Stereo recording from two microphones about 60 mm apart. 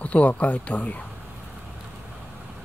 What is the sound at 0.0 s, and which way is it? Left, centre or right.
Speech, left.